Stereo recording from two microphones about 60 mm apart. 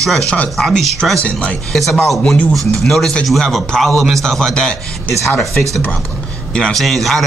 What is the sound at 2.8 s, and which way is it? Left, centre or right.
A man's voice, centre.